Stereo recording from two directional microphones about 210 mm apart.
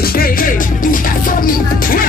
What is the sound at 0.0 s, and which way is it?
Music, 45° left (ahead or behind).